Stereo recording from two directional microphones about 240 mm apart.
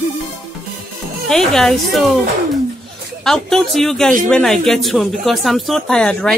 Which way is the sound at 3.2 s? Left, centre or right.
Centre.